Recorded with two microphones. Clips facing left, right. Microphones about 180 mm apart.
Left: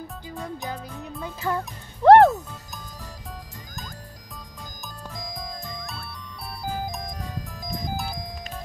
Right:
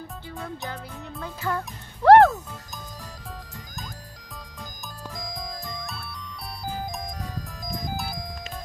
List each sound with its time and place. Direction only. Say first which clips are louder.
0.7 s music: left 2 dB; 15° left (ahead or behind)